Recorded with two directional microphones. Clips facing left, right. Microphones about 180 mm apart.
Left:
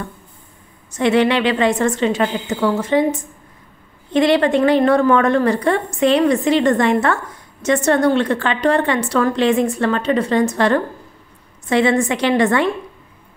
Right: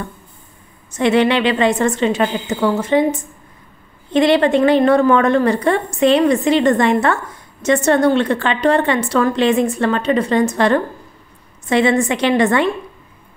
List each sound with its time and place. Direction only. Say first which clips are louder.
0.9 s a woman's voice: right 1 dB; 25° right (ahead or behind)